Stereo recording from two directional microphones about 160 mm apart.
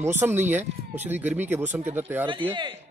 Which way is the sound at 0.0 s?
15° right (ahead or behind).